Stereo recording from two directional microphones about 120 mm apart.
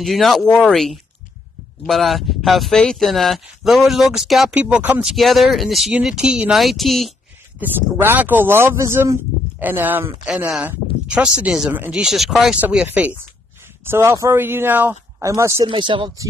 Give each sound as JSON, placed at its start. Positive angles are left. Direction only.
{"t": 0.0, "sound": "speech", "side_deg": 0}
{"t": 4.6, "sound": "speech", "side_deg": -10}
{"t": 5.1, "sound": "speech", "side_deg": 0}
{"t": 7.6, "sound": "speech", "side_deg": -15}
{"t": 12.5, "sound": "speech", "side_deg": -15}
{"t": 13.8, "sound": "speech", "side_deg": -20}
{"t": 15.6, "sound": "speech", "side_deg": -45}